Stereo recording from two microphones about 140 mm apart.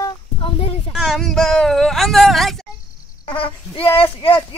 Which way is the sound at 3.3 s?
40° left (ahead or behind).